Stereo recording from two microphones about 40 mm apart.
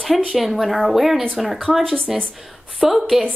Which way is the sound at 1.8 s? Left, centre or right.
Centre.